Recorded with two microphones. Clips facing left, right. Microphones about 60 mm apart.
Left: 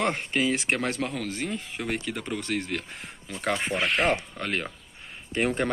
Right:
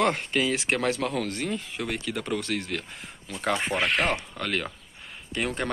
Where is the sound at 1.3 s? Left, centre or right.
Centre.